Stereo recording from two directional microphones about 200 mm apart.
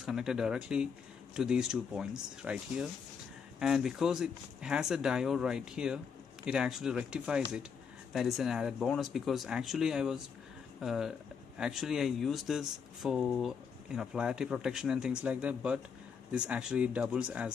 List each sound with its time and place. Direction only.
0.0 s speech: centre (ahead or behind)